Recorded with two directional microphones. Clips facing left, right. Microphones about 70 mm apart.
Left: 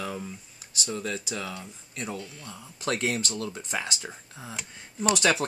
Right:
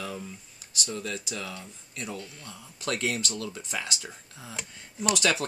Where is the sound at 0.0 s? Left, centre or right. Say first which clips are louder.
Left 2 dB; left.